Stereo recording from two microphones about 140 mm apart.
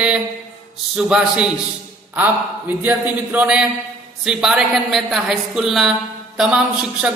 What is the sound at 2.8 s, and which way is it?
A man's voice, 15° right (ahead or behind).